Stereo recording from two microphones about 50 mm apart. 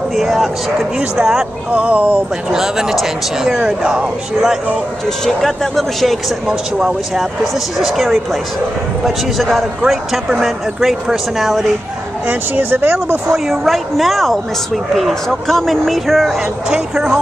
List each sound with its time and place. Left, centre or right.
0.1 s speech: centre
1.7 s speech: right
2.5 s speech: centre
5.2 s speech: centre
7.8 s speech: centre
12.3 s speech: right
13.3 s speech: centre
16.7 s speech: centre